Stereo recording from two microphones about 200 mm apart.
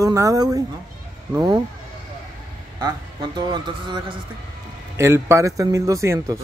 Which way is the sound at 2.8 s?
20° right (ahead or behind).